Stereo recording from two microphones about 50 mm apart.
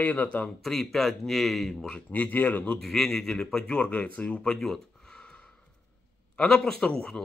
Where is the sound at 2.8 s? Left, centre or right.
Centre.